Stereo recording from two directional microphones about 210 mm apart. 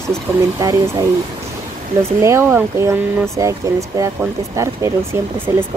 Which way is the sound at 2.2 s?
10° right (ahead or behind).